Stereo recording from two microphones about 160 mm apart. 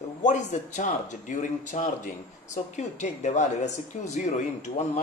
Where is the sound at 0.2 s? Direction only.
50° left (ahead or behind).